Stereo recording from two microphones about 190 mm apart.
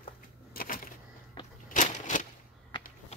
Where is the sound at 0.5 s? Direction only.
50° left (ahead or behind).